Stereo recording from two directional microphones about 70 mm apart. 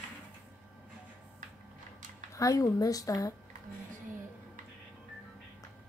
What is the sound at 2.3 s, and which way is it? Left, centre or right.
Speech, left.